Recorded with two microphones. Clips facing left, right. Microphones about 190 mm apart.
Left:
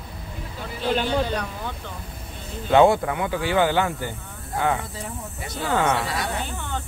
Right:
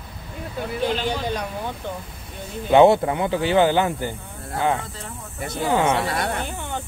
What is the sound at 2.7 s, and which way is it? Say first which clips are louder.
Speech: right 3 dB; 20° right (ahead or behind).